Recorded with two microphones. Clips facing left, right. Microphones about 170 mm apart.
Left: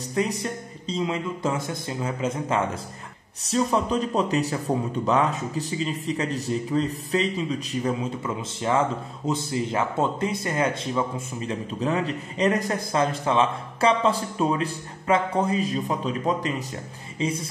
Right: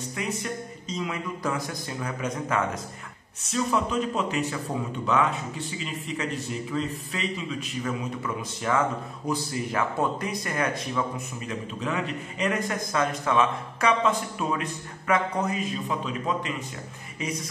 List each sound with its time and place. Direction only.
0.1 s a man's voice: 35° left (ahead or behind)
8.6 s speech: 25° left (ahead or behind)